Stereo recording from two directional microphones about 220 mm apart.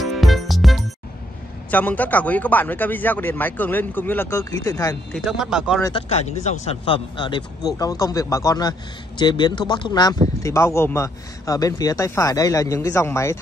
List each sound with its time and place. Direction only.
0.0 s music: centre (ahead or behind)
1.7 s a man's voice: 5° left (ahead or behind)
5.1 s speech: centre (ahead or behind)
5.8 s a man's voice: 15° left (ahead or behind)
6.0 s a man's voice: 30° left (ahead or behind); by 13.4 s 10° left (ahead or behind)